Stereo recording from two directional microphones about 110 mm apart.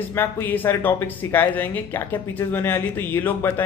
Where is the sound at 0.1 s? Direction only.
20° left (ahead or behind).